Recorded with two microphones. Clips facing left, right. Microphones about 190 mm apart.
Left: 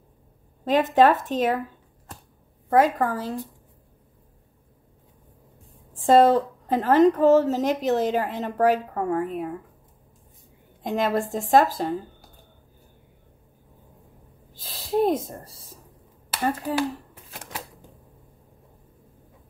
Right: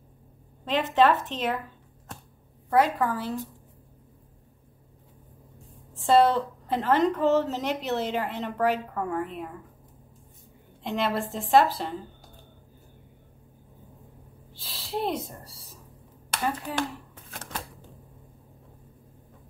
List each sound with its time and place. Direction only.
0.7 s speech: 40° left (ahead or behind)
2.7 s speech: 45° left (ahead or behind)
6.0 s a woman's voice: 45° left (ahead or behind)
10.8 s a woman's voice: 45° left (ahead or behind)
14.5 s speech: 45° left (ahead or behind)
16.3 s finger snapping: 5° left (ahead or behind)
17.3 s shuffling cards: 10° left (ahead or behind)